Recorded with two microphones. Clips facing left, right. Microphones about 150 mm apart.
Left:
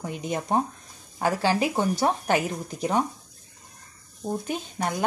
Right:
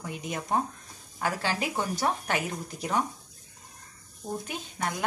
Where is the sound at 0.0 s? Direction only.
25° left (ahead or behind).